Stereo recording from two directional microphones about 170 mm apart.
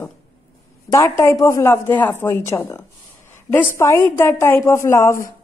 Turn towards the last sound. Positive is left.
turn(degrees=15)  # may be behind; listen again after turning